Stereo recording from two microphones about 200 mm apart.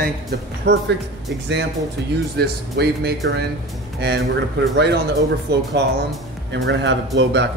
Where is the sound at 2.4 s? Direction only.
55° right (ahead or behind).